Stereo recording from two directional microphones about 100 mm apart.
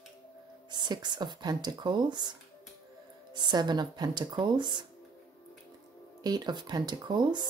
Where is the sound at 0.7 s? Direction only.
45° right (ahead or behind).